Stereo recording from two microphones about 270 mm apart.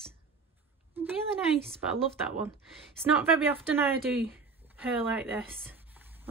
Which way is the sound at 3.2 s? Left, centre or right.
Centre.